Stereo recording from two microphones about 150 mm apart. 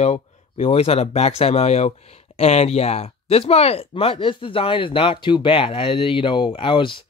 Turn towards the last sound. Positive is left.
turn(degrees=35)  # may be behind; listen again after turning